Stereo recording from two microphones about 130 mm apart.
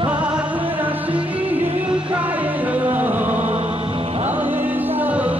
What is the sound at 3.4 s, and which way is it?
Music, 55° right (ahead or behind).